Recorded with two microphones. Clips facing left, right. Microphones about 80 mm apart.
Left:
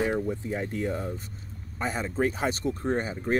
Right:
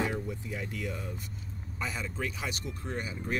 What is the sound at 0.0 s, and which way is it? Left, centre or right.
Speech, left.